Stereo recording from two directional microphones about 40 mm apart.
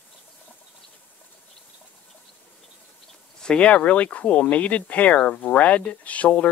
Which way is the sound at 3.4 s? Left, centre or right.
Left.